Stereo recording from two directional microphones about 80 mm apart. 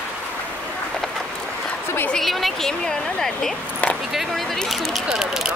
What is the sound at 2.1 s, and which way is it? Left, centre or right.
A woman's voice, centre.